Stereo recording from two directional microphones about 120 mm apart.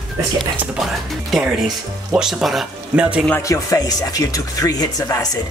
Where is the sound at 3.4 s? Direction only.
25° left (ahead or behind).